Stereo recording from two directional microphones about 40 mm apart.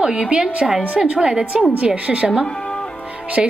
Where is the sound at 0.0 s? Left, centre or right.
Right.